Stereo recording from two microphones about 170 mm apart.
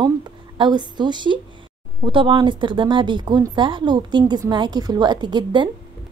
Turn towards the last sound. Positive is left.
turn(degrees=-25)  # may be behind; listen again after turning